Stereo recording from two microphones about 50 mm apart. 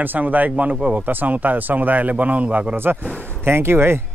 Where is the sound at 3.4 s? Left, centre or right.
Right.